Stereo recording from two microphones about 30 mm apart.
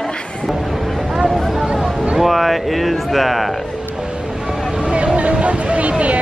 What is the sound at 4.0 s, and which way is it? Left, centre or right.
Music, right.